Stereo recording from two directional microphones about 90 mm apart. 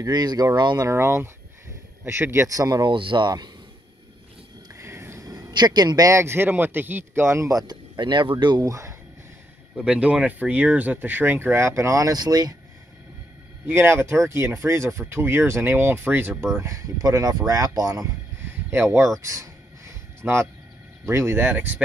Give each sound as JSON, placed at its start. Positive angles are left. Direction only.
{"t": 0.0, "sound": "a man's voice", "side_deg": -50}
{"t": 0.8, "sound": "speech", "side_deg": -30}
{"t": 2.8, "sound": "speech", "side_deg": -70}
{"t": 4.7, "sound": "a sound", "side_deg": -30}
{"t": 5.2, "sound": "a man's voice", "side_deg": -40}
{"t": 8.6, "sound": "speech", "side_deg": -35}
{"t": 9.8, "sound": "speech", "side_deg": -15}
{"t": 13.7, "sound": "speech", "side_deg": -30}
{"t": 16.5, "sound": "a man's voice", "side_deg": -35}
{"t": 18.9, "sound": "a sound", "side_deg": -35}
{"t": 21.0, "sound": "speech", "side_deg": -35}
{"t": 21.5, "sound": "speech", "side_deg": -20}